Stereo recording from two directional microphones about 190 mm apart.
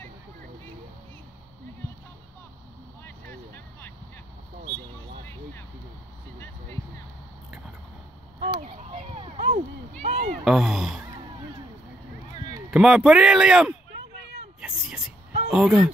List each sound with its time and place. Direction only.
3.3 s vehicle: 10° left (ahead or behind)
8.5 s fowl: 35° right (ahead or behind)
10.0 s a sound: 35° right (ahead or behind)
10.4 s speech: centre (ahead or behind)
12.7 s speech: 5° right (ahead or behind)
14.6 s a sound: 5° right (ahead or behind)